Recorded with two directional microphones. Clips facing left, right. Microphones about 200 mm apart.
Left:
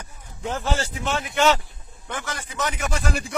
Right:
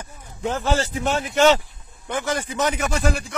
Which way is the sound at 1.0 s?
40° right (ahead or behind).